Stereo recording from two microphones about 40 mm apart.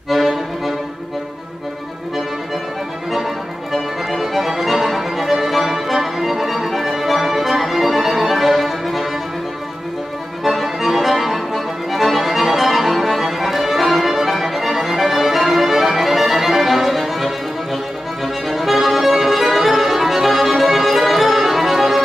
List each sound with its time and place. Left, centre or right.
0.1 s music: centre
3.1 s music: centre
10.4 s music: centre